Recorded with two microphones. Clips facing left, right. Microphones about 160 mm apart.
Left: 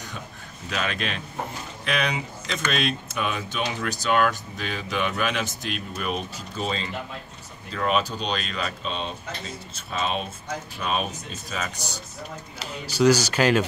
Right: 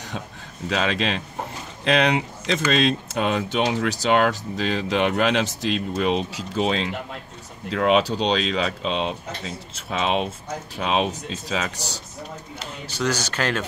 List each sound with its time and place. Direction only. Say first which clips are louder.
0.7 s speech: right 6 dB; 90° right
12.9 s speech: left 6 dB; 10° left (ahead or behind)